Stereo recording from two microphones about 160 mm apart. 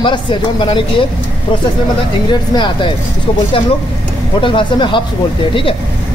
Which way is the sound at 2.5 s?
30° left (ahead or behind).